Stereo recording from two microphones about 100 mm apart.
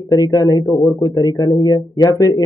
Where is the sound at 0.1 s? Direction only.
35° left (ahead or behind).